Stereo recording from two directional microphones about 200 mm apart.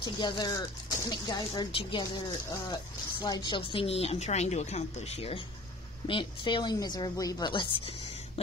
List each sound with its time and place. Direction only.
0.0 s speech: 20° left (ahead or behind)